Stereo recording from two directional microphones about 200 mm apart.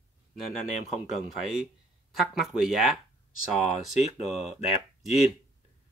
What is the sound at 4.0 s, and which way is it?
Speech, 30° left (ahead or behind).